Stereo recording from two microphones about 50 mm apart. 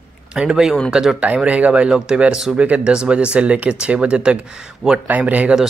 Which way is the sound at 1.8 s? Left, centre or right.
Centre.